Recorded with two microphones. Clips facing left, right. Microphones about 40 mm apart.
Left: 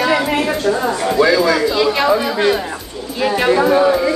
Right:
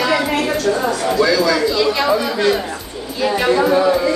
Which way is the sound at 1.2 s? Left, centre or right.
Left.